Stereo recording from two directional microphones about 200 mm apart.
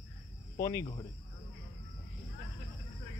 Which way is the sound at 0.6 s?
15° left (ahead or behind).